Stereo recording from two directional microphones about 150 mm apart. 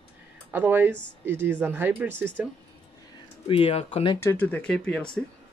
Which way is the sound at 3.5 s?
40° left (ahead or behind).